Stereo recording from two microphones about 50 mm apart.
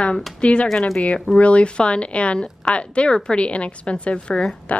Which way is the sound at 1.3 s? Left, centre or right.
Left.